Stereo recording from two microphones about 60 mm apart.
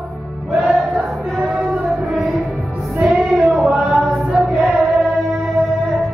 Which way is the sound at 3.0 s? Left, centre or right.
Centre.